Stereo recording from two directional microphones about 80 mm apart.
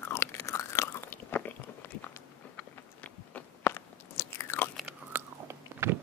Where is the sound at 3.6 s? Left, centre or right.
Left.